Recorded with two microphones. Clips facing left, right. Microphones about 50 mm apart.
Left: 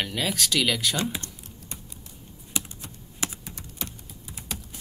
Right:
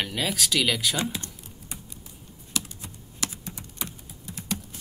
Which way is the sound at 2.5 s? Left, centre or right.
Centre.